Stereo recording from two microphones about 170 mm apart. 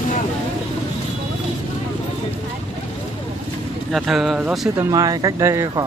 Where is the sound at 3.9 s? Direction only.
Centre (ahead or behind).